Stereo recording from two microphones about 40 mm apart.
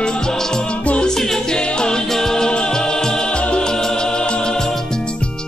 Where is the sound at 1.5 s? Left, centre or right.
Left.